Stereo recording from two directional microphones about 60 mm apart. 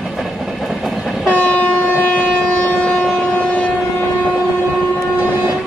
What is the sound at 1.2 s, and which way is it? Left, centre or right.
Train, centre.